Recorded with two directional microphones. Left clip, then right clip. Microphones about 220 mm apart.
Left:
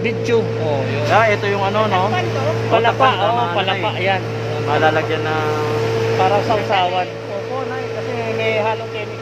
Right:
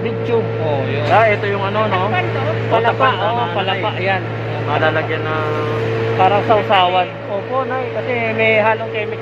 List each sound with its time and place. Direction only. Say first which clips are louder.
1.1 s speech: right 1 dB; 50° left (ahead or behind)
2.7 s speech: even; 20° left (ahead or behind)
4.6 s speech: left 1 dB; 50° left (ahead or behind)
6.2 s speech: right 6 dB; 10° right (ahead or behind)
8.4 s speech: right 5 dB; 30° right (ahead or behind)